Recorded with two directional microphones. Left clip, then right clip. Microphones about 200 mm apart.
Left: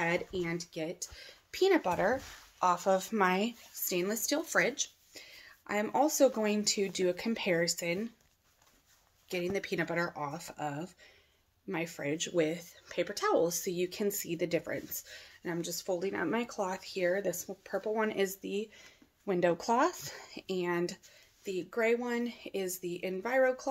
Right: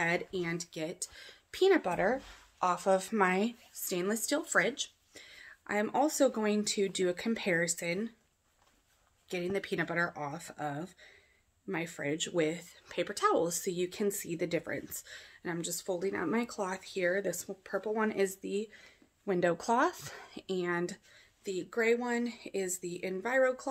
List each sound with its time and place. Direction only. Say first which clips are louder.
0.0 s speech: even; 15° right (ahead or behind)
9.3 s speech: even; 10° right (ahead or behind)